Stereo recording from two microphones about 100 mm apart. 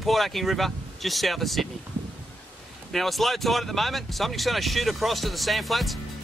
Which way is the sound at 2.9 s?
Centre (ahead or behind).